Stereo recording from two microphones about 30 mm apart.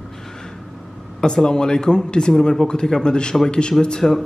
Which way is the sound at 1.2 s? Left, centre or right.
Left.